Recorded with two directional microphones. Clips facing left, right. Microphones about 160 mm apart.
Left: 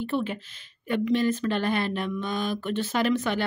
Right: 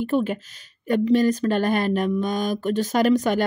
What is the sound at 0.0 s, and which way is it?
Speech, 45° right (ahead or behind).